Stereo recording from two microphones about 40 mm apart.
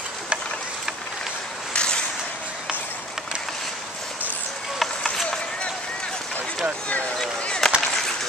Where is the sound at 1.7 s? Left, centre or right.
Left.